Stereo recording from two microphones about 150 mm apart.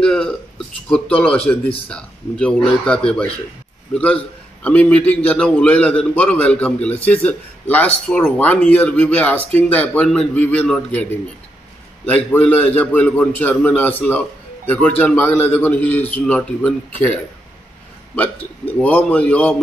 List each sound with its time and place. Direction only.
0.0 s a man's voice: 5° left (ahead or behind)
12.1 s a man's voice: 10° left (ahead or behind)